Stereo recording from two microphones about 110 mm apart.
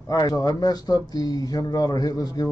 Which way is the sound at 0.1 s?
35° left (ahead or behind).